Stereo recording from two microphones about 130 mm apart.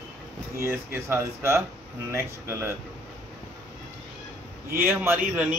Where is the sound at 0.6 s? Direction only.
20° right (ahead or behind).